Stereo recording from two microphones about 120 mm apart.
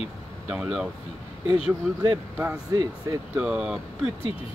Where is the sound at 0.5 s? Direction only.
5° right (ahead or behind).